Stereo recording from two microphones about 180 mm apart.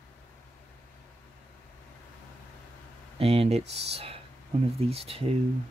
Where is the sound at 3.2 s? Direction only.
35° right (ahead or behind).